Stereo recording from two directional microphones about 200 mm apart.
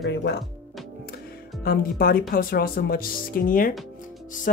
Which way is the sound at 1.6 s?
45° left (ahead or behind).